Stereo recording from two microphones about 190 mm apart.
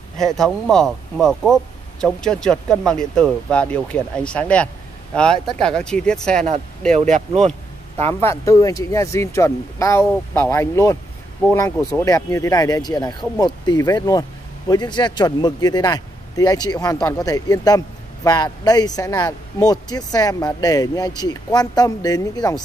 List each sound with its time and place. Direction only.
0.2 s speech: centre (ahead or behind)
7.0 s speech: 40° right (ahead or behind)
8.2 s speech: 15° left (ahead or behind)